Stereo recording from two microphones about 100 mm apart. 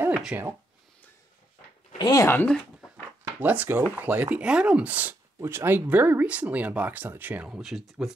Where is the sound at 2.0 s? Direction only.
40° left (ahead or behind).